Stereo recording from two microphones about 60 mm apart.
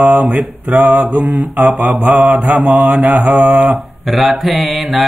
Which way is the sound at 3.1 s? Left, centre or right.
Right.